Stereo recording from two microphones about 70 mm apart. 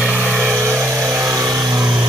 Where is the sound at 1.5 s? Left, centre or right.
Right.